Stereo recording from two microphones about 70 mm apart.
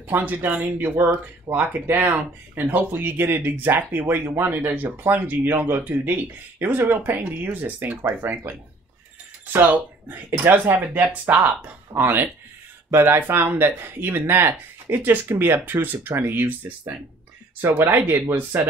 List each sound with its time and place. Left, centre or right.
0.2 s speech: right